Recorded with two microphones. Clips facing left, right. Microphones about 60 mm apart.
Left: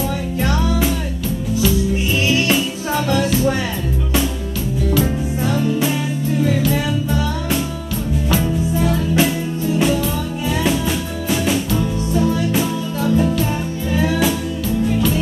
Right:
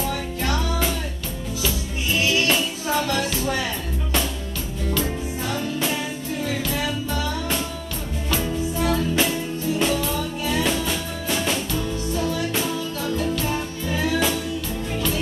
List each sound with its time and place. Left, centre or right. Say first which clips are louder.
2.4 s music: left 4 dB; centre
5.5 s music: left 7 dB; centre
8.9 s music: left 4 dB; centre
10.6 s music: left 6 dB; centre
11.7 s music: left 6 dB; left